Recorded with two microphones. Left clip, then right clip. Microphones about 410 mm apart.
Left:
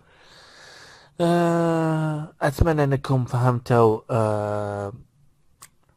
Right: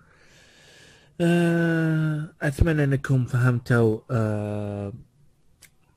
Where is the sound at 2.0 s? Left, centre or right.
Centre.